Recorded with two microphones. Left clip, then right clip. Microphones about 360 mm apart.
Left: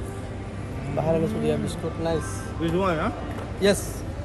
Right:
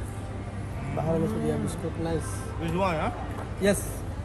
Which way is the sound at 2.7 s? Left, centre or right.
Right.